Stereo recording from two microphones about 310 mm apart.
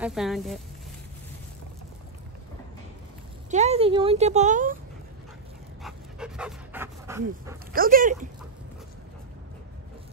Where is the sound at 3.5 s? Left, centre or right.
Right.